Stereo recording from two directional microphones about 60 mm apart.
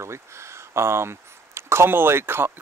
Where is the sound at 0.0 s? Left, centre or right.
Right.